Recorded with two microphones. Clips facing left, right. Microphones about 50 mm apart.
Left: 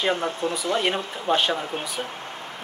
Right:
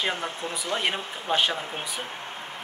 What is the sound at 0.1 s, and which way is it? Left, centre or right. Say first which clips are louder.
Speech: left 6 dB; left.